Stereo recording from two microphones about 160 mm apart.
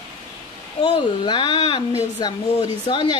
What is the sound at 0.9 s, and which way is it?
A woman's voice, 30° left (ahead or behind).